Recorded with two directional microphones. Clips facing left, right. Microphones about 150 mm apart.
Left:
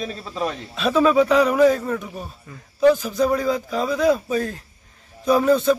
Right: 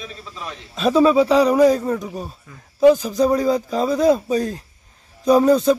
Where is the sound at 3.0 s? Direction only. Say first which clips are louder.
Right 3 dB; 40° right (ahead or behind).